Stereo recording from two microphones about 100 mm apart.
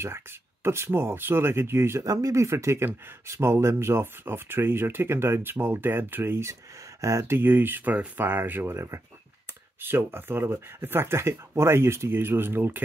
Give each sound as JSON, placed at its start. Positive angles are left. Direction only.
{"t": 0.7, "sound": "speech", "side_deg": -25}